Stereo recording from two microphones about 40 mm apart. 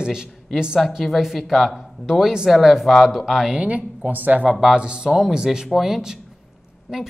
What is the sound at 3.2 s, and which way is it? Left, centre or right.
Speech, centre.